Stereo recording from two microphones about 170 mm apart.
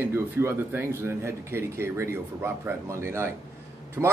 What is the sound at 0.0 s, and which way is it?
A man's voice, 15° right (ahead or behind).